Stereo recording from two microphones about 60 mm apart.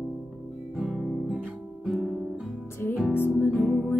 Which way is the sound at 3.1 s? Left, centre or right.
Left.